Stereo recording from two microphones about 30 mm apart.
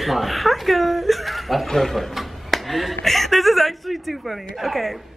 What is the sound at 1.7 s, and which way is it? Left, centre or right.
Speech, centre.